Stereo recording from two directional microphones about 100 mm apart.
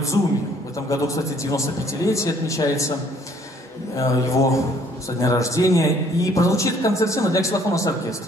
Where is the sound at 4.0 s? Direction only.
35° left (ahead or behind).